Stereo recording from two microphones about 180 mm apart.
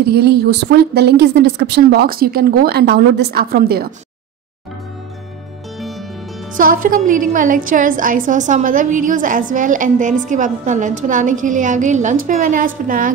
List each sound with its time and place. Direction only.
0.1 s a woman's voice: 60° right (ahead or behind)
5.8 s music: centre (ahead or behind)
6.5 s a woman's voice: 50° right (ahead or behind)